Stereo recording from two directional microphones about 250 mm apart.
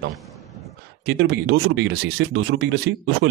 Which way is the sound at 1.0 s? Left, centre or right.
Right.